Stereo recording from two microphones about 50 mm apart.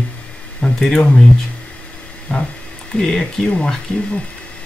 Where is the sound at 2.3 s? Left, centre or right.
Centre.